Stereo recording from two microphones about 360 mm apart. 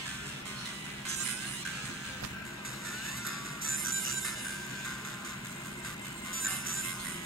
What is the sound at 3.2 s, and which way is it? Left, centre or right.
Music, right.